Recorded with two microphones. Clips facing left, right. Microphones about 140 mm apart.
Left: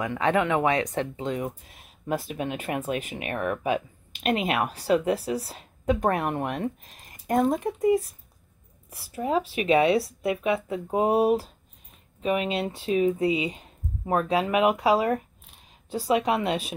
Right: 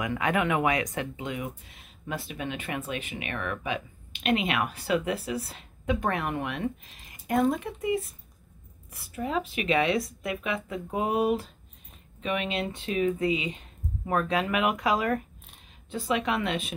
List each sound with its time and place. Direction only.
0.1 s speech: 25° left (ahead or behind)